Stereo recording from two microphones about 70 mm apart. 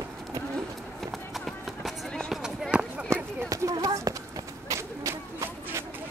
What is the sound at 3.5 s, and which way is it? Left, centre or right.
Clip-clop, right.